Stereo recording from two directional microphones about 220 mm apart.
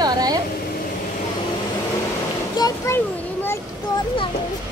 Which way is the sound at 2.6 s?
20° left (ahead or behind).